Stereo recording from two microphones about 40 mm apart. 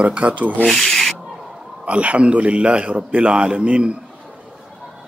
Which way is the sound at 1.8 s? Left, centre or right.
Right.